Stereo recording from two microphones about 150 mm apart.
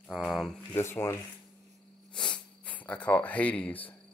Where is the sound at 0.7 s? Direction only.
15° left (ahead or behind).